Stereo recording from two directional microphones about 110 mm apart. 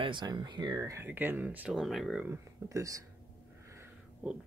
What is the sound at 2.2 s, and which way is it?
Speech, 30° right (ahead or behind).